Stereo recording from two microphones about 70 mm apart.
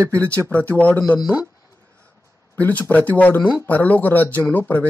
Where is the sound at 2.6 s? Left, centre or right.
Left.